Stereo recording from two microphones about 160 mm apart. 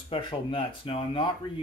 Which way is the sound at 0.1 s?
35° left (ahead or behind).